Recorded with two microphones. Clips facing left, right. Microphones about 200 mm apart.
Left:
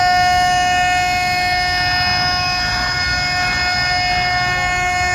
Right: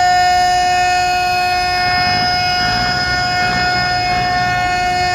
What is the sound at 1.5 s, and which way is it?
Vehicle, 55° right (ahead or behind).